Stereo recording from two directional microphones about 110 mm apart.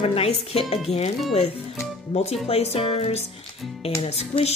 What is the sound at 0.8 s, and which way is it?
Speech, 75° left (ahead or behind).